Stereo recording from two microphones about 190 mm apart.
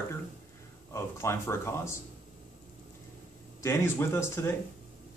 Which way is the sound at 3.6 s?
15° left (ahead or behind).